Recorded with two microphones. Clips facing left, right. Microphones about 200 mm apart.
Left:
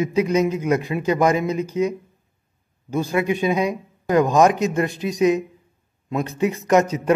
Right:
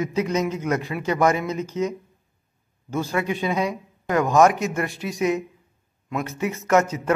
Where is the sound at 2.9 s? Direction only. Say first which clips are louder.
Left 4 dB; 15° left (ahead or behind).